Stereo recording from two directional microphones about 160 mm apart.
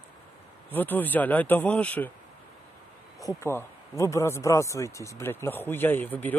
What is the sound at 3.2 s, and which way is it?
Speech, 20° left (ahead or behind).